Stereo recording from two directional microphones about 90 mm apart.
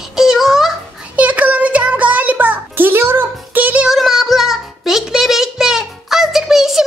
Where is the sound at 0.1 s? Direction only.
5° right (ahead or behind).